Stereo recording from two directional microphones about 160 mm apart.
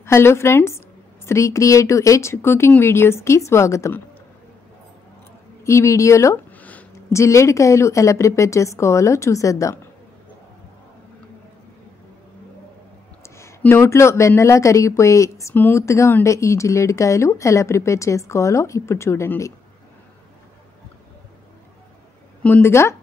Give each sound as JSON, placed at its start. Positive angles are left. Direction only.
{"t": 0.0, "sound": "a woman's voice", "side_deg": 15}
{"t": 5.6, "sound": "speech", "side_deg": 20}
{"t": 13.2, "sound": "speech", "side_deg": 15}
{"t": 22.4, "sound": "a woman's voice", "side_deg": 15}